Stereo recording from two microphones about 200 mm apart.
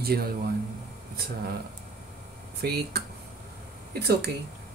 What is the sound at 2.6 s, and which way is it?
Speech, 50° right (ahead or behind).